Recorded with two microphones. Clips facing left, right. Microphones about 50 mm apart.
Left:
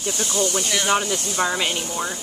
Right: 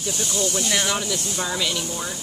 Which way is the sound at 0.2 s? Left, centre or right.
Left.